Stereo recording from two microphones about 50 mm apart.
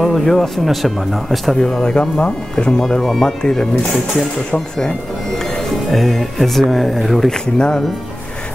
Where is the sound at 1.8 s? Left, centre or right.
Centre.